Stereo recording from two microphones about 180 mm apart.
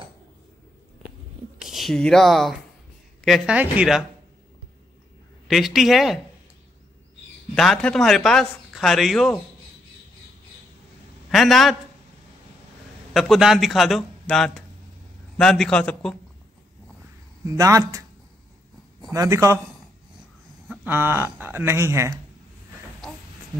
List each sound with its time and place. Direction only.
1.6 s speech: centre (ahead or behind)
5.5 s speech: centre (ahead or behind)
7.5 s speech: centre (ahead or behind)
11.2 s a man's voice: centre (ahead or behind)
13.1 s speech: centre (ahead or behind)
17.5 s speech: 20° right (ahead or behind)
19.1 s speech: 15° right (ahead or behind)
20.6 s speech: 5° right (ahead or behind)